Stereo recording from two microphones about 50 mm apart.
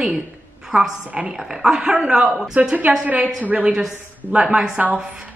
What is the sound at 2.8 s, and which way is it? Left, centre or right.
A woman's voice, right.